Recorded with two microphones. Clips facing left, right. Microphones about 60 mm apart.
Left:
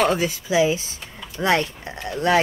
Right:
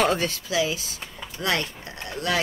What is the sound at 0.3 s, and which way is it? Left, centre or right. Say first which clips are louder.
Speech: left 6 dB; left.